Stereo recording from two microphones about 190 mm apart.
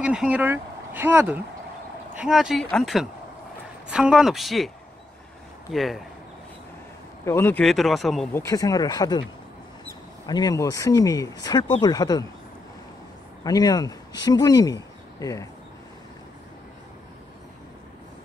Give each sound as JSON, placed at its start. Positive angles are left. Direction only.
{"t": 0.0, "sound": "speech", "side_deg": -5}
{"t": 5.7, "sound": "speech", "side_deg": 0}
{"t": 7.2, "sound": "speech", "side_deg": 10}
{"t": 8.5, "sound": "speech", "side_deg": 20}
{"t": 10.2, "sound": "speech", "side_deg": 20}
{"t": 13.4, "sound": "speech", "side_deg": 20}